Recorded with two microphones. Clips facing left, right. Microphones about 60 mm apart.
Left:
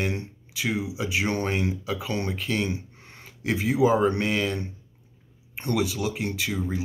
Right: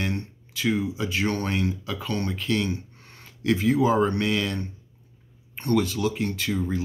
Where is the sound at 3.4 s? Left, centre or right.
Centre.